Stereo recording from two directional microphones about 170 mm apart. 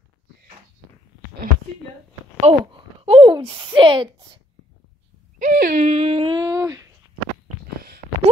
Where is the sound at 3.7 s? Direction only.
30° right (ahead or behind).